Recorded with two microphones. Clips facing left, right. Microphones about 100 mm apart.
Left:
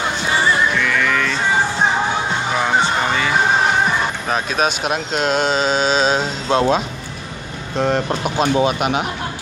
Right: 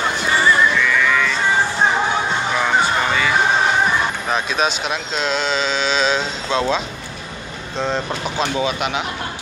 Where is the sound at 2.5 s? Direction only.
25° left (ahead or behind).